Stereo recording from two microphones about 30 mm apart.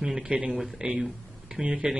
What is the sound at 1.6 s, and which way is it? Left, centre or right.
Speech, right.